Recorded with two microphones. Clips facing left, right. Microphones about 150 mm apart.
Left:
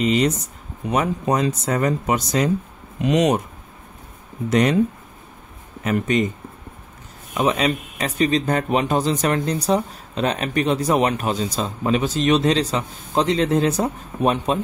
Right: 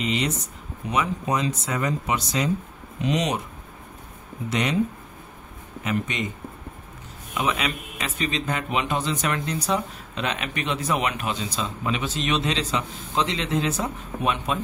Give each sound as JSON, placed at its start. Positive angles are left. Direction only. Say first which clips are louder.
{"t": 0.0, "sound": "speech", "louder": "left 7 dB", "side_deg": 40}
{"t": 4.5, "sound": "speech", "louder": "left 8 dB", "side_deg": 45}
{"t": 5.9, "sound": "speech", "louder": "left 7 dB", "side_deg": 45}
{"t": 7.3, "sound": "a man's voice", "louder": "left 6 dB", "side_deg": 40}